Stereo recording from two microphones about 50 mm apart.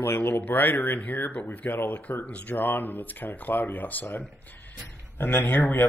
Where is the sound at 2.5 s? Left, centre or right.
Left.